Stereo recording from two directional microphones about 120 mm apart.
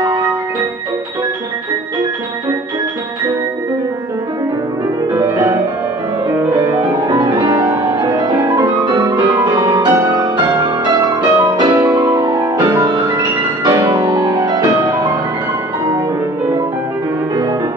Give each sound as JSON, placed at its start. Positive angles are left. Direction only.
{"t": 0.0, "sound": "music", "side_deg": -35}
{"t": 5.1, "sound": "music", "side_deg": -25}
{"t": 7.1, "sound": "music", "side_deg": -35}